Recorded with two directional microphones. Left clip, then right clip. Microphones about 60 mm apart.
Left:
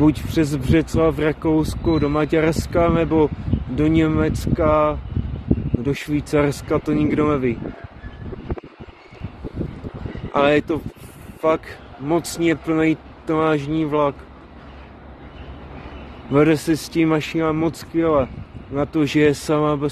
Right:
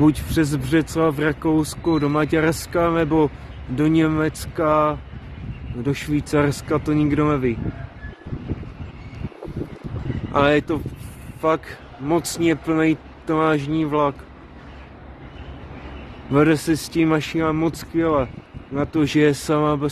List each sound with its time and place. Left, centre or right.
0.0 s speech: right
7.2 s speech: right
10.3 s speech: right
12.0 s speech: right
16.3 s speech: right